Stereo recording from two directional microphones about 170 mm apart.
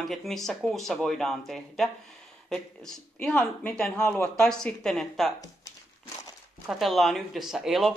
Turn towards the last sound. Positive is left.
turn(degrees=0)  # may be behind; listen again after turning